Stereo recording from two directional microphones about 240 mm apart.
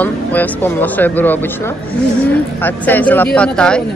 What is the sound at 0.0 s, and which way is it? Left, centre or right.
Speech, centre.